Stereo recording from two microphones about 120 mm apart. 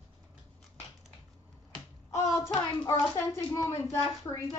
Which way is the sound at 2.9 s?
25° left (ahead or behind).